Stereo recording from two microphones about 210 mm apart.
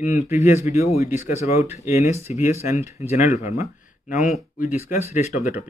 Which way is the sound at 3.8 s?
40° left (ahead or behind).